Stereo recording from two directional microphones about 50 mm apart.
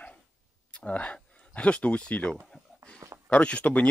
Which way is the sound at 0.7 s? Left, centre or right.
Left.